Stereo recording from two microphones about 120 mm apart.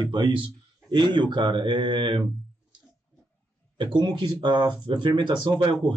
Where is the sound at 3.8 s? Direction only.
40° right (ahead or behind).